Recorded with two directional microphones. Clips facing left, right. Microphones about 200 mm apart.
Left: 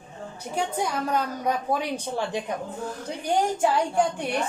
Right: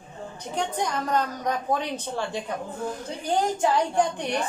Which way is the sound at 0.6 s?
10° left (ahead or behind).